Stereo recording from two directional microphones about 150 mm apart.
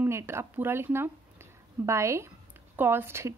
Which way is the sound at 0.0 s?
15° right (ahead or behind).